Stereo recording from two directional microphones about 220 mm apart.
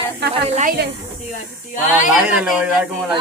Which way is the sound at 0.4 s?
30° right (ahead or behind).